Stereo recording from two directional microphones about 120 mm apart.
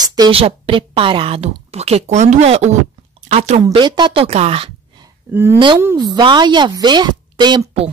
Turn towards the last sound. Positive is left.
turn(degrees=-40)  # may be behind; listen again after turning